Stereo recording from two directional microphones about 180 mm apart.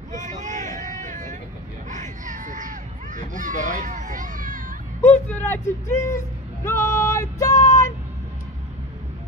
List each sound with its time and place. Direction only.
0.2 s hubbub: 45° right (ahead or behind)
1.9 s a sound: 45° right (ahead or behind)
5.0 s speech: 10° left (ahead or behind)